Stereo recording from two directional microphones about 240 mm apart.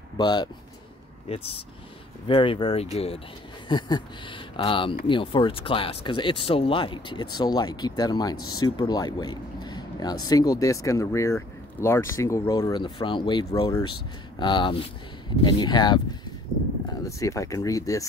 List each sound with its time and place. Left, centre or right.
0.2 s speech: centre
17.0 s speech: centre